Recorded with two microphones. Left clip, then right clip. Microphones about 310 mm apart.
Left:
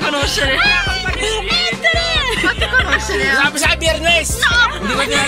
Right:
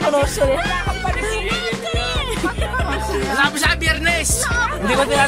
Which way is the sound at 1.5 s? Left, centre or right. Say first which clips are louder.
Left 7 dB; centre.